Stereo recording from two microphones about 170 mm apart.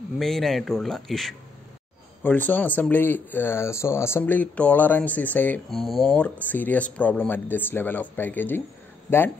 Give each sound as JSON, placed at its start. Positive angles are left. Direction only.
{"t": 0.2, "sound": "a man's voice", "side_deg": 0}